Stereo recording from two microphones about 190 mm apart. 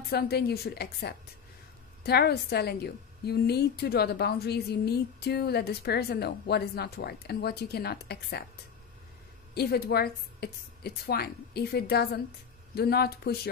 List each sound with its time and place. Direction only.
0.1 s a woman's voice: 55° left (ahead or behind)
9.5 s a woman's voice: 55° left (ahead or behind)